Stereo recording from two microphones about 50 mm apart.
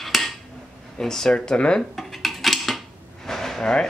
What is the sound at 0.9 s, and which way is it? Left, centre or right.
Speech, centre.